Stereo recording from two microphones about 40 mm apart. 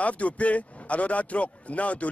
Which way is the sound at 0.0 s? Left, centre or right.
Left.